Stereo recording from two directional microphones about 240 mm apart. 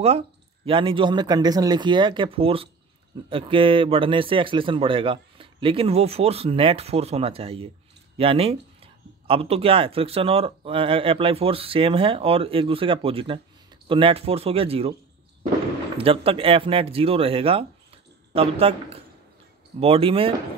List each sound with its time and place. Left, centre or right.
0.7 s speech: right
16.0 s speech: right